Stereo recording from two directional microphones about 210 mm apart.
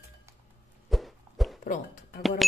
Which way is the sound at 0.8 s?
Centre (ahead or behind).